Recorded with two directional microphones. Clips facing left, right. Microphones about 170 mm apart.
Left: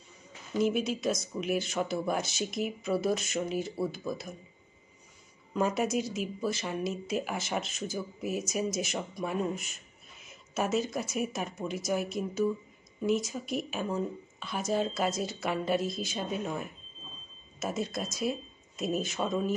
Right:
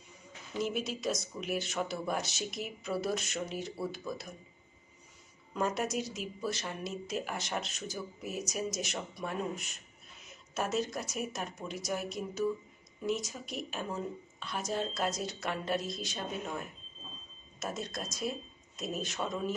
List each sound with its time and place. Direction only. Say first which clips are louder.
0.6 s speech: left 6 dB; centre (ahead or behind)
5.5 s speech: left 4 dB; centre (ahead or behind)